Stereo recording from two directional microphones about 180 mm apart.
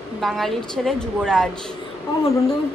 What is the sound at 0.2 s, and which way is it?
A man's voice, centre (ahead or behind).